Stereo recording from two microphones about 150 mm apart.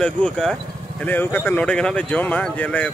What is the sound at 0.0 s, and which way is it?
Speech, 5° left (ahead or behind).